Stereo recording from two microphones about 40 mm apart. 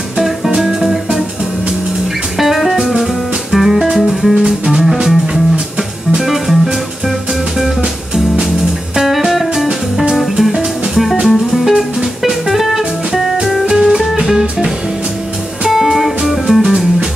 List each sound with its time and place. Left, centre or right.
0.6 s music: centre
2.3 s music: centre
4.4 s music: centre
6.1 s music: centre
8.9 s music: centre
15.7 s music: centre